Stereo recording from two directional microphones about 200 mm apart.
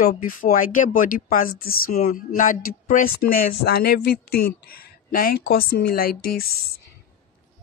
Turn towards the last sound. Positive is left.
turn(degrees=50)  # may be behind; listen again after turning